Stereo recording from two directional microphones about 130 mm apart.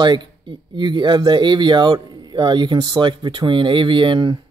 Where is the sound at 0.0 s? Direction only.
35° right (ahead or behind).